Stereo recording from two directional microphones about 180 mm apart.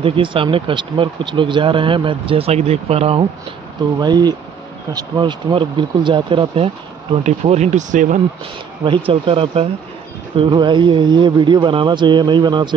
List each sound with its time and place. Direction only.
0.0 s speech: 30° right (ahead or behind)
4.0 s speech: 20° right (ahead or behind); by 8.2 s 45° right (ahead or behind)
8.8 s speech: 30° right (ahead or behind)